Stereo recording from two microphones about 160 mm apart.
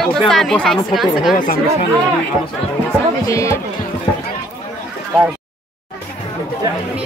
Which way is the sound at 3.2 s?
20° left (ahead or behind).